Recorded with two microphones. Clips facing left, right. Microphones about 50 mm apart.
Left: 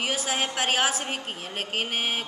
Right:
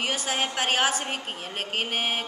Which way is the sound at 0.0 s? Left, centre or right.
Centre.